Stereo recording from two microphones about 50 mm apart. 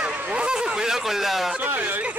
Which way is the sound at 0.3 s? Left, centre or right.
Centre.